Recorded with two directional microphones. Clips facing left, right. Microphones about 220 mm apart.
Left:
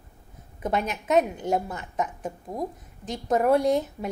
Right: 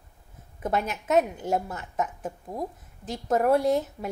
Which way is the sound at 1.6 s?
15° left (ahead or behind).